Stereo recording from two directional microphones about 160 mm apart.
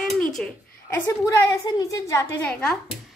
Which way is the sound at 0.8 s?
15° left (ahead or behind).